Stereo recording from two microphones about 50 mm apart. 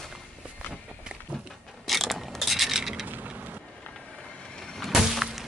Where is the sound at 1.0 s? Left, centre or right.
Right.